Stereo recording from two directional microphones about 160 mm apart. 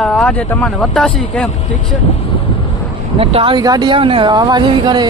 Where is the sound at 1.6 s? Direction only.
50° left (ahead or behind).